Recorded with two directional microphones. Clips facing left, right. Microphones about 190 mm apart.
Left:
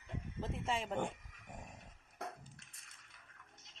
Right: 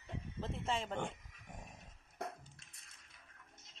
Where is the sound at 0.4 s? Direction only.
10° left (ahead or behind).